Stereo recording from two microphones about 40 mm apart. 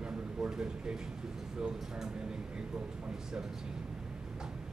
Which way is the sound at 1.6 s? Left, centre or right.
Centre.